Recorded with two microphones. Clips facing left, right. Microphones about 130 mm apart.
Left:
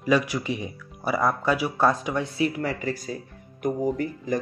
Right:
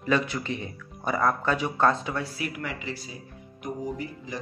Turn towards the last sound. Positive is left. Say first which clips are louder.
# left 7 dB
turn(degrees=50)  # may be behind; listen again after turning